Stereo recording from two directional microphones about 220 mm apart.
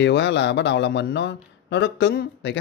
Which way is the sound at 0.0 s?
55° left (ahead or behind).